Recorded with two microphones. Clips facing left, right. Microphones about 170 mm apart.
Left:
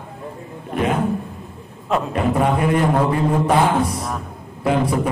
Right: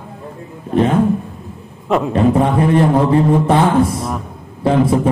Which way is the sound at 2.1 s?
30° right (ahead or behind).